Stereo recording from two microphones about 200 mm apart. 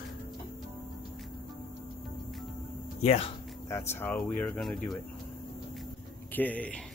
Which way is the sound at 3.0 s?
30° left (ahead or behind).